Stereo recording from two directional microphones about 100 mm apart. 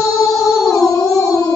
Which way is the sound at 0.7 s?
35° left (ahead or behind).